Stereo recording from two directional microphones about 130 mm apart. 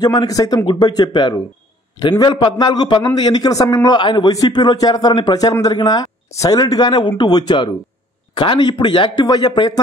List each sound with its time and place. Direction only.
0.0 s a man's voice: 35° left (ahead or behind)